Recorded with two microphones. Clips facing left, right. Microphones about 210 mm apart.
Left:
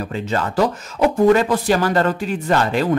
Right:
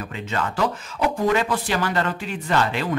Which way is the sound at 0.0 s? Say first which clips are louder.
Left 5 dB; 35° left (ahead or behind).